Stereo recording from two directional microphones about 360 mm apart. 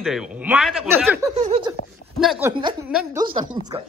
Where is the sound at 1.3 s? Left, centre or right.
Centre.